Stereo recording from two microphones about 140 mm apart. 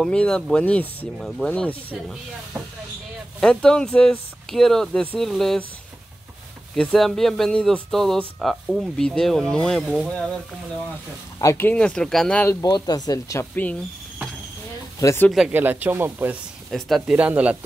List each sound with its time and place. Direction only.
0.0 s speech: 5° left (ahead or behind)
3.3 s speech: 5° left (ahead or behind)
6.7 s speech: centre (ahead or behind)
11.4 s speech: 15° left (ahead or behind)
12.4 s speech: 30° left (ahead or behind)
15.0 s speech: 20° left (ahead or behind)
15.3 s speech: 10° right (ahead or behind)
16.7 s speech: centre (ahead or behind)
17.2 s speech: 10° right (ahead or behind)